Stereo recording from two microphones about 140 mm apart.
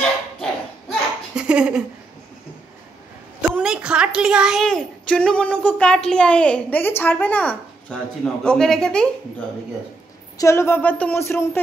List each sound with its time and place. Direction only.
0.4 s a sound: 5° right (ahead or behind)
3.5 s a woman's voice: 5° right (ahead or behind)
10.3 s speech: 20° left (ahead or behind)